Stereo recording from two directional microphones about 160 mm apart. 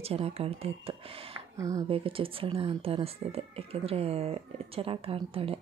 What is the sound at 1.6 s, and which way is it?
Speech, 20° right (ahead or behind).